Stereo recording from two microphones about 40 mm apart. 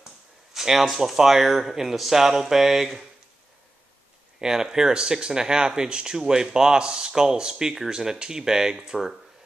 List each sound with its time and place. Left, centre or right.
0.5 s speech: centre
4.4 s speech: centre